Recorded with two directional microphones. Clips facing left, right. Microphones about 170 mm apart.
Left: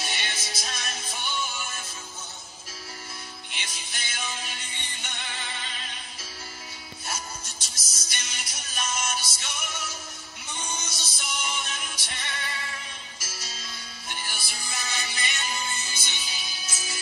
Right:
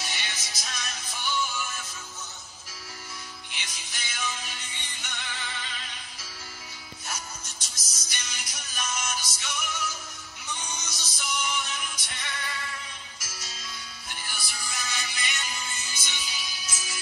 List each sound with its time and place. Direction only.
0.0 s music: 30° left (ahead or behind)
3.5 s music: 30° left (ahead or behind)
7.1 s music: 30° left (ahead or behind)
13.2 s music: 30° left (ahead or behind)